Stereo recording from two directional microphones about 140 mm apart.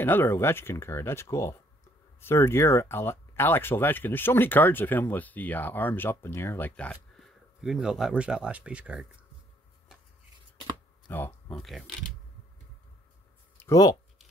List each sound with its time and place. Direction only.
0.0 s speech: 15° left (ahead or behind); by 9.2 s 5° right (ahead or behind)
11.1 s a sound: 15° left (ahead or behind)
11.5 s speech: centre (ahead or behind)
13.6 s speech: 25° left (ahead or behind)